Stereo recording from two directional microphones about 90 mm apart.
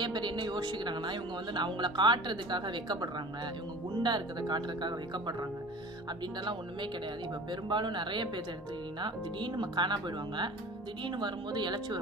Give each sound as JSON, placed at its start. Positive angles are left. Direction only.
{"t": 0.0, "sound": "speech", "side_deg": -55}
{"t": 7.7, "sound": "speech", "side_deg": -60}